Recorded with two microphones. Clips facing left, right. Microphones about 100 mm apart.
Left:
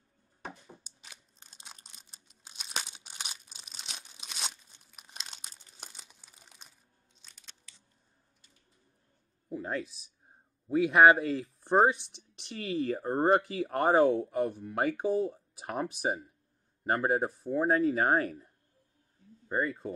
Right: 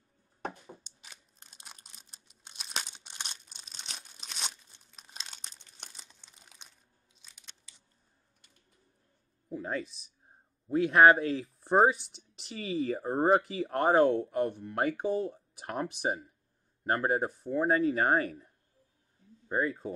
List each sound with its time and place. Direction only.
0.8 s a sound: 5° left (ahead or behind)
4.7 s crumpling: 5° left (ahead or behind)
9.5 s speech: centre (ahead or behind)
19.5 s speech: centre (ahead or behind)